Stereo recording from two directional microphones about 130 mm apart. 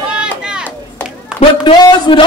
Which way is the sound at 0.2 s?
5° right (ahead or behind).